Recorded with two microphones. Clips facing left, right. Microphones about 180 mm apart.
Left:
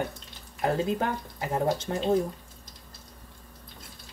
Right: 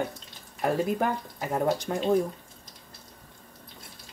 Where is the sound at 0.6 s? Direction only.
20° left (ahead or behind).